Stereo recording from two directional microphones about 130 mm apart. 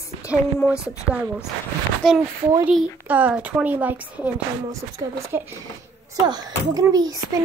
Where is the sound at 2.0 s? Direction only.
5° left (ahead or behind).